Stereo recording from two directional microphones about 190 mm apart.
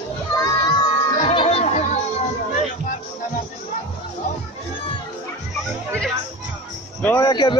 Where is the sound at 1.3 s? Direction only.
30° left (ahead or behind).